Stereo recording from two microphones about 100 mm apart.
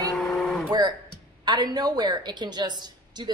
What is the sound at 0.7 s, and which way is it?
A woman's voice, 45° right (ahead or behind).